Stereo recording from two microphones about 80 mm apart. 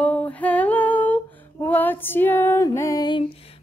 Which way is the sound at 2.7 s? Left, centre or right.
Left.